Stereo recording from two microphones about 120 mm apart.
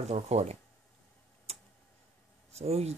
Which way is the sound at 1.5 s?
60° right (ahead or behind).